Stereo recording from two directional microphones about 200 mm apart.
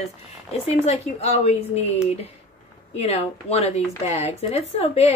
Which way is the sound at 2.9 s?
30° left (ahead or behind).